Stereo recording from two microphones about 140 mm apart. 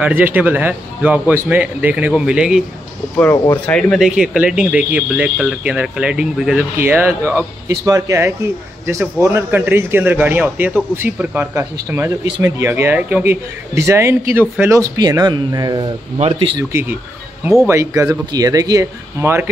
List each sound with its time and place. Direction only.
0.0 s a man's voice: 15° right (ahead or behind)
3.6 s speech: 10° left (ahead or behind)
4.0 s a man's voice: 5° right (ahead or behind); by 15.9 s 30° right (ahead or behind)
16.2 s speech: 40° right (ahead or behind)
16.7 s a man's voice: 15° right (ahead or behind)